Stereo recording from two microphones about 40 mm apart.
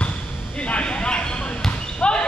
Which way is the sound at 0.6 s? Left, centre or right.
Left.